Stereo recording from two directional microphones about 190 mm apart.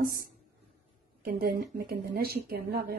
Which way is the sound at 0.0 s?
50° right (ahead or behind).